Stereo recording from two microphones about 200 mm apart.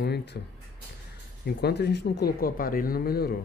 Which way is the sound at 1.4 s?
55° left (ahead or behind).